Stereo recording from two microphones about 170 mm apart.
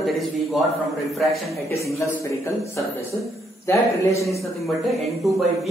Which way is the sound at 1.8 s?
15° left (ahead or behind).